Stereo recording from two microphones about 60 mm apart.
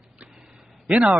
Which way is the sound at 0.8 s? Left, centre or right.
Centre.